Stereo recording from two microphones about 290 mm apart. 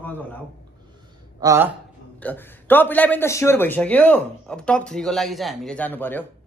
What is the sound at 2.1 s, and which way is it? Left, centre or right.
A man's voice, centre.